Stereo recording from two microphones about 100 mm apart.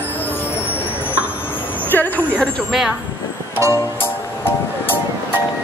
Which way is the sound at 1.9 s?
20° left (ahead or behind).